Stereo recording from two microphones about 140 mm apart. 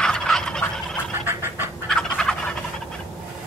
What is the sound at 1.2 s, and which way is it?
Pant, 15° right (ahead or behind).